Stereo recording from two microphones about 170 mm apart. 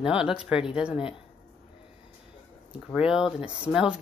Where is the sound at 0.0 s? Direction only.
5° right (ahead or behind).